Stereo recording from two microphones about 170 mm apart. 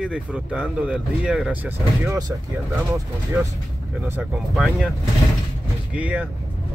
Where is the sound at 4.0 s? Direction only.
Centre (ahead or behind).